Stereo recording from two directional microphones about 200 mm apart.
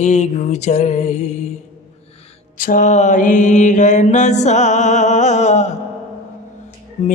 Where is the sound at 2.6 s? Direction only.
40° left (ahead or behind).